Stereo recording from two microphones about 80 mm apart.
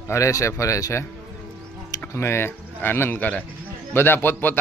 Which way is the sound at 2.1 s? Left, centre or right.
Left.